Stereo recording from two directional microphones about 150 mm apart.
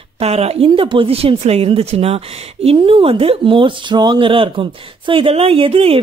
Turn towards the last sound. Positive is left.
turn(degrees=-40)  # may be behind; listen again after turning